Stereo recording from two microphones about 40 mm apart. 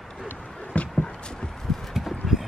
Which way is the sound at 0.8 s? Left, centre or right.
Left.